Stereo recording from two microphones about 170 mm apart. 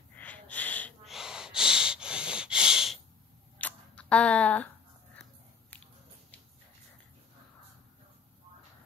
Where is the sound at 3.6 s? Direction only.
10° left (ahead or behind).